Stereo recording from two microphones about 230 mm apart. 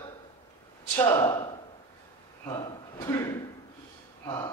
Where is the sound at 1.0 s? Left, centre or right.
Centre.